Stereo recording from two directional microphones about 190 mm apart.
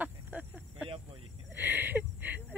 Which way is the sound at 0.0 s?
10° right (ahead or behind).